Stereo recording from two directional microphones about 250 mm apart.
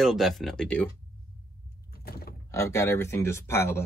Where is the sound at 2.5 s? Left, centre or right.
Centre.